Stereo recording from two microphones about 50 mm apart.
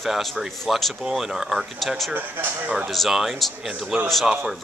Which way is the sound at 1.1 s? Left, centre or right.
Centre.